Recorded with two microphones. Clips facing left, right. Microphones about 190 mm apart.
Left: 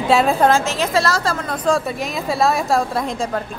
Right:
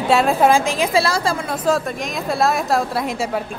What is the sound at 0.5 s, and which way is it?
A woman's voice, 10° right (ahead or behind).